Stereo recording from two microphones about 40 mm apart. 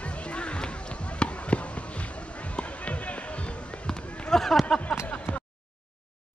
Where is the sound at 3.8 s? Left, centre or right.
Centre.